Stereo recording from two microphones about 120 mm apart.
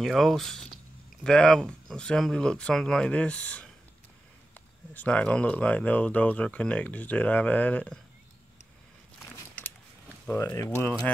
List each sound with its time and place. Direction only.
0.0 s speech: centre (ahead or behind)
4.9 s speech: 10° left (ahead or behind)
9.6 s a sound: 15° left (ahead or behind)
10.4 s speech: 25° left (ahead or behind)